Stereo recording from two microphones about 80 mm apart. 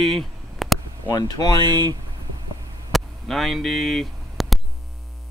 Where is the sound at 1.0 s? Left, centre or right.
Left.